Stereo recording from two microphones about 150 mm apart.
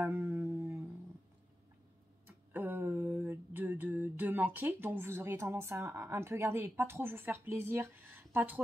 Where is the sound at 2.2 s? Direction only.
15° right (ahead or behind).